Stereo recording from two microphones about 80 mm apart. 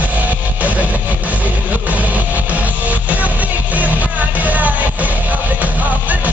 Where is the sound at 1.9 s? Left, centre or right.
Centre.